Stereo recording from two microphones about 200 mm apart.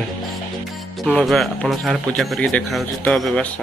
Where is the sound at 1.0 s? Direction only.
Centre (ahead or behind).